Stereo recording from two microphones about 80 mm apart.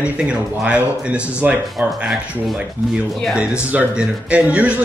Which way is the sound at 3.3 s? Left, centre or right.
Centre.